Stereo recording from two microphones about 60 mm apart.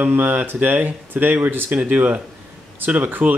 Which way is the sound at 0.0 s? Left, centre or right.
Right.